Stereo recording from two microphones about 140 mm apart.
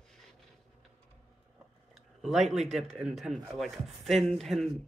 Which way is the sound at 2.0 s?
Centre (ahead or behind).